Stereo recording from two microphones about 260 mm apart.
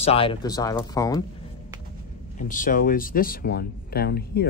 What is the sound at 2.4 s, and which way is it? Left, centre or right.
Speech, left.